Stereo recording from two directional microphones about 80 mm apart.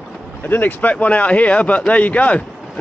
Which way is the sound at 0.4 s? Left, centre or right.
Left.